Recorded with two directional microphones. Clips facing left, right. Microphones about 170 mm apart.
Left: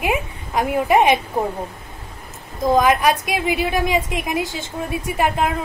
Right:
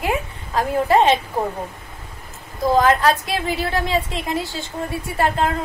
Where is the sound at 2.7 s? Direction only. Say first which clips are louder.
Even; 15° left (ahead or behind).